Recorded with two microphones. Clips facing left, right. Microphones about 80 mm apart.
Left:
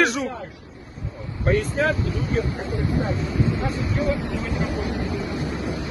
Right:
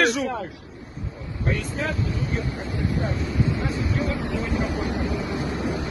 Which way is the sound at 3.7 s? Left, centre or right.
Left.